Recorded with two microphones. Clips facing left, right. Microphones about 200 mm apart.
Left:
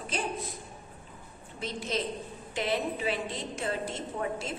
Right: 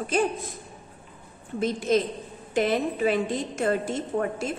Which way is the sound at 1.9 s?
50° right (ahead or behind).